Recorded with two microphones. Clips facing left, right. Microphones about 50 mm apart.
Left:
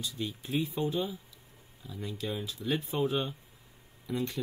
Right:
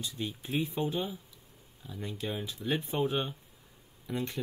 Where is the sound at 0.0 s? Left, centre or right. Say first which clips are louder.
Left 1 dB; centre.